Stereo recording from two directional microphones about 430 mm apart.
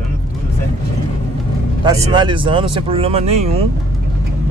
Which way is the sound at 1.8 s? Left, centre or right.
Centre.